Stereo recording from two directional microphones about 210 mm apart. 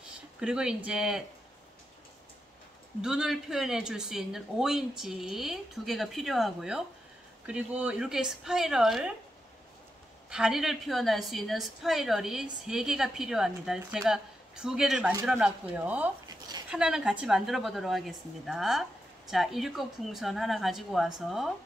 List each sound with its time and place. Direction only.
0.4 s speech: 5° right (ahead or behind)
3.0 s speech: 5° right (ahead or behind)
10.3 s speech: centre (ahead or behind)
16.3 s a sound: 20° right (ahead or behind)
16.7 s speech: 5° right (ahead or behind)